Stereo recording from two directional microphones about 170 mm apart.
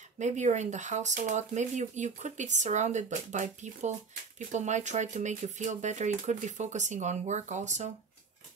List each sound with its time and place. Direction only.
0.2 s speech: 45° right (ahead or behind)